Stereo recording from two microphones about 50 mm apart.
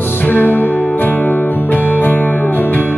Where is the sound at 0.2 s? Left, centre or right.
Left.